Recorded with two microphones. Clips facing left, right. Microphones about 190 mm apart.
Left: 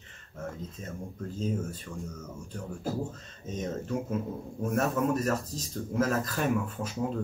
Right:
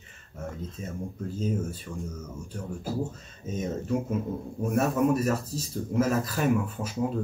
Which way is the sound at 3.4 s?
10° right (ahead or behind).